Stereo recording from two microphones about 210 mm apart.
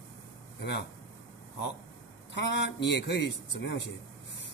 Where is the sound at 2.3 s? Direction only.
60° left (ahead or behind).